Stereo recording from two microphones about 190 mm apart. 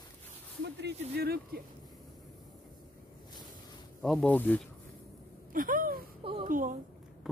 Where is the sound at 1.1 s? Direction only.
55° right (ahead or behind).